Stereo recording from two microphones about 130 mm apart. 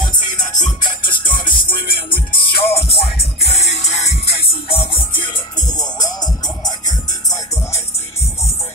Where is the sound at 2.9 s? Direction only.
50° left (ahead or behind); by 8.5 s 20° left (ahead or behind).